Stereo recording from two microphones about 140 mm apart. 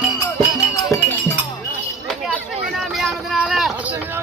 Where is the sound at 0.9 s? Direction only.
20° left (ahead or behind).